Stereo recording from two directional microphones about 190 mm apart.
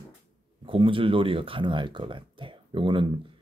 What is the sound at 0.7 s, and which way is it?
Speech, 25° right (ahead or behind).